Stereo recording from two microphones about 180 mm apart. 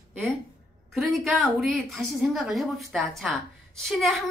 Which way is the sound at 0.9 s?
Centre (ahead or behind).